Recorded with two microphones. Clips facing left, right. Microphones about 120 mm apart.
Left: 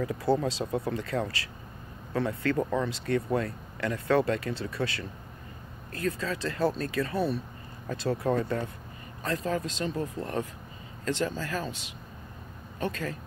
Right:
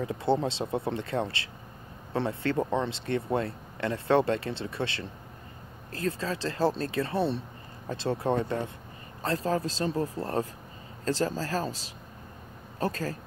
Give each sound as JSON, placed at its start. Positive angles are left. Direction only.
{"t": 0.0, "sound": "speech", "side_deg": -25}